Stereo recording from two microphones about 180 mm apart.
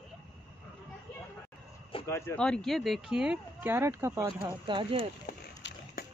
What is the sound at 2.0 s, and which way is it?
Speech, 15° left (ahead or behind).